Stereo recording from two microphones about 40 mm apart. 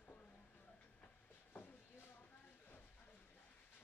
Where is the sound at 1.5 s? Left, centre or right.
Left.